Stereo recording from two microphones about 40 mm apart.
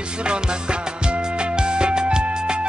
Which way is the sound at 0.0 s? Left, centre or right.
Right.